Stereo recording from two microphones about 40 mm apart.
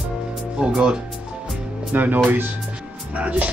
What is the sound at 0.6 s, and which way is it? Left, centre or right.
Music, right.